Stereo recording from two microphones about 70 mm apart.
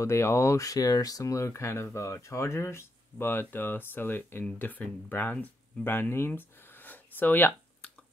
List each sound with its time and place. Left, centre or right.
0.0 s speech: left
5.9 s speech: left